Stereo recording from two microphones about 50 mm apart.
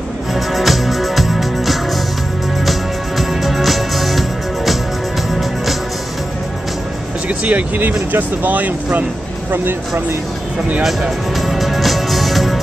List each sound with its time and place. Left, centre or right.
0.3 s music: centre
7.2 s speech: right
9.5 s speech: right
11.1 s music: centre